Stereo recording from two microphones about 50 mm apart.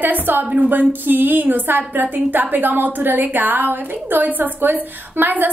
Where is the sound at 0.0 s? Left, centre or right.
Right.